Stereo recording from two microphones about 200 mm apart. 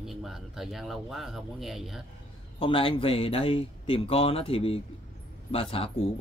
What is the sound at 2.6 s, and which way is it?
Speech, 25° left (ahead or behind).